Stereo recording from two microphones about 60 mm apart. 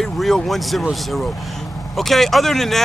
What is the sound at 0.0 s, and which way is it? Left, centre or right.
Speech, centre.